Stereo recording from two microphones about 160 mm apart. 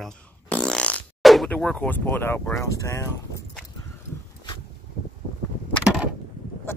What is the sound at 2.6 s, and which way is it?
Speech, 20° left (ahead or behind).